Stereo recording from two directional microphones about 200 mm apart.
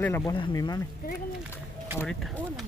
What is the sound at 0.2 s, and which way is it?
Speech, 20° left (ahead or behind).